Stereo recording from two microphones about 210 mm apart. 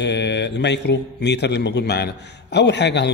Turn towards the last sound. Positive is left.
turn(degrees=55)  # may be behind; listen again after turning